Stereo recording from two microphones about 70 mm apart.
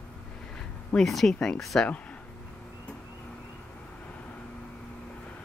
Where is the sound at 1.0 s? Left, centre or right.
Centre.